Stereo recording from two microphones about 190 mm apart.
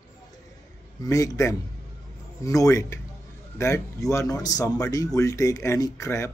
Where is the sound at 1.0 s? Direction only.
20° left (ahead or behind).